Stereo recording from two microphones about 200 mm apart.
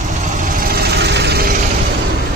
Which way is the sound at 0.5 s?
50° right (ahead or behind).